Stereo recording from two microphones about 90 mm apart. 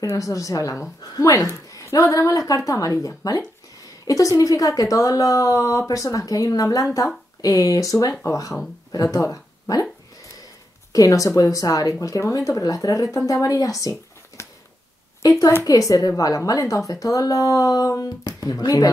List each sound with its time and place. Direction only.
0.0 s speech: 40° left (ahead or behind)
10.9 s speech: 40° left (ahead or behind)